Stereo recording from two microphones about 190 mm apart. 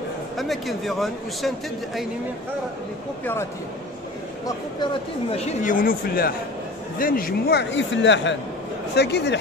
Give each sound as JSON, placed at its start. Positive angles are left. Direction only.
{"t": 0.4, "sound": "speech", "side_deg": 0}
{"t": 5.3, "sound": "speech", "side_deg": 35}
{"t": 8.9, "sound": "speech", "side_deg": 60}